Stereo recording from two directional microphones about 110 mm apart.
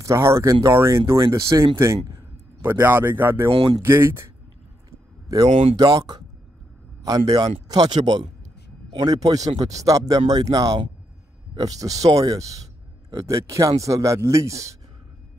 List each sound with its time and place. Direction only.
0.0 s a man's voice: 25° right (ahead or behind)
3.4 s speech: 50° right (ahead or behind)
3.8 s speech: 20° right (ahead or behind)
5.5 s speech: 80° right
5.8 s a man's voice: 40° right (ahead or behind)